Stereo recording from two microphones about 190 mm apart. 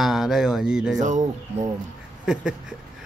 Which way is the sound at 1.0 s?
40° right (ahead or behind).